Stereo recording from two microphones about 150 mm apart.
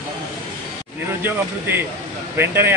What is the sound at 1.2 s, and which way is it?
A man's voice, 15° right (ahead or behind).